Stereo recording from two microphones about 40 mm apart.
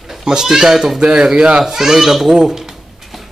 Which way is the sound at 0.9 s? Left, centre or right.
Right.